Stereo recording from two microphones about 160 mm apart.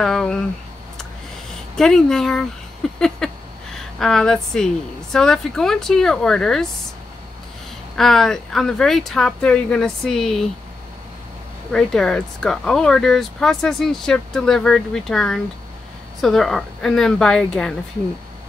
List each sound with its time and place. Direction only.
0.0 s speech: 5° left (ahead or behind)
1.8 s speech: 5° left (ahead or behind)
3.2 s a sound: 5° left (ahead or behind)
3.7 s a woman's voice: 5° left (ahead or behind)
7.9 s speech: centre (ahead or behind)
11.7 s speech: 5° left (ahead or behind)